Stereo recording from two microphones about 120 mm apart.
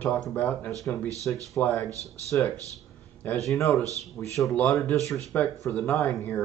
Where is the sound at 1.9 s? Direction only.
25° right (ahead or behind).